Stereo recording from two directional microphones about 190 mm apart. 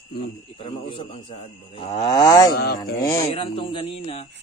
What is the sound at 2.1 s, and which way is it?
Speech, 20° left (ahead or behind).